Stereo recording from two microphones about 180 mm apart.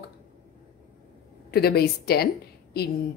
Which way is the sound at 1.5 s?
60° left (ahead or behind).